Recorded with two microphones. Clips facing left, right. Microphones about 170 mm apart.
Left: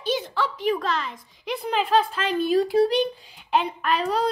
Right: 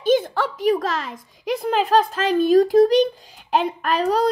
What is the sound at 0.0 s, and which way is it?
A woman's voice, 50° right (ahead or behind).